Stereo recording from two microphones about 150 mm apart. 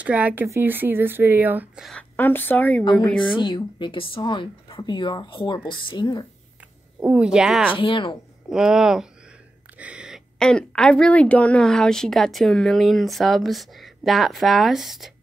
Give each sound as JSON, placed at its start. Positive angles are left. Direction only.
{"t": 0.0, "sound": "speech", "side_deg": -10}
{"t": 1.9, "sound": "a woman's voice", "side_deg": 10}
{"t": 2.8, "sound": "a woman's voice", "side_deg": 30}
{"t": 7.0, "sound": "speech", "side_deg": -5}
{"t": 7.8, "sound": "a woman's voice", "side_deg": 35}
{"t": 8.5, "sound": "a woman's voice", "side_deg": -5}